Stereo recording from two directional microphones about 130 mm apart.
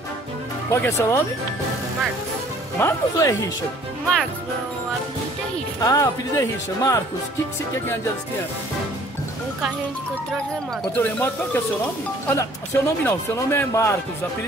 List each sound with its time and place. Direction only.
0.7 s speech: 20° left (ahead or behind)
2.8 s speech: 20° left (ahead or behind)
5.8 s speech: 25° left (ahead or behind)
11.0 s speech: 15° left (ahead or behind)